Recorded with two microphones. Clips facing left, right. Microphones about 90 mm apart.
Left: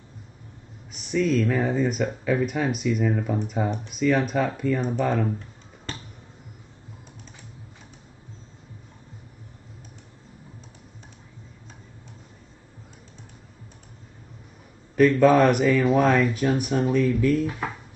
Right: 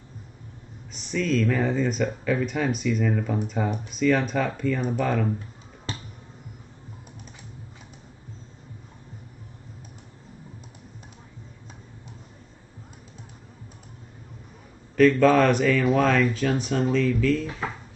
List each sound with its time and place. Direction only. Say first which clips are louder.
1.1 s speech: left 2 dB; 5° left (ahead or behind)
15.0 s speech: left 1 dB; 10° left (ahead or behind)